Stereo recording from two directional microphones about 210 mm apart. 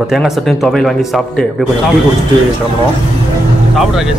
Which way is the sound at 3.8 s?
Centre (ahead or behind).